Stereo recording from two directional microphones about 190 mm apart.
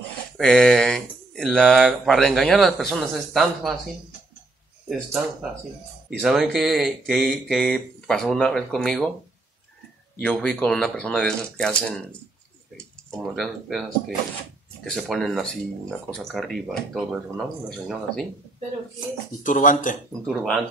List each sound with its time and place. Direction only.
0.4 s speech: 5° left (ahead or behind)
6.0 s speech: centre (ahead or behind)
10.2 s speech: 5° left (ahead or behind)
19.4 s speech: 45° left (ahead or behind)
20.2 s speech: centre (ahead or behind)